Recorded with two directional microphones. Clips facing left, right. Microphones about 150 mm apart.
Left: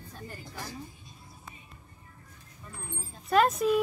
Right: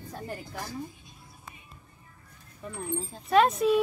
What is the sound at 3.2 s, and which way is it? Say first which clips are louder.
Speech: right 2 dB; centre (ahead or behind).